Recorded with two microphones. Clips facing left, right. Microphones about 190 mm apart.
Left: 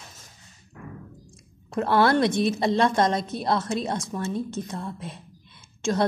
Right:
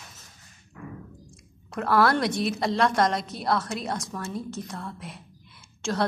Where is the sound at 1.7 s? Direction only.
25° left (ahead or behind).